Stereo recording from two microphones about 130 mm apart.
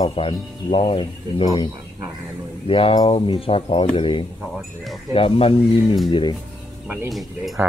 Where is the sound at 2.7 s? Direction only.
45° left (ahead or behind).